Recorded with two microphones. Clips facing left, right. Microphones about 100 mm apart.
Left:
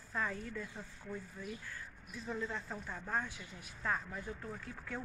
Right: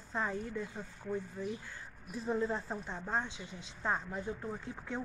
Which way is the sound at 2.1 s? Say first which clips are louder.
Right 7 dB; 30° right (ahead or behind).